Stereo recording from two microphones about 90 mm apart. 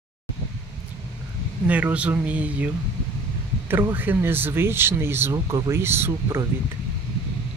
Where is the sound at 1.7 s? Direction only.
15° right (ahead or behind).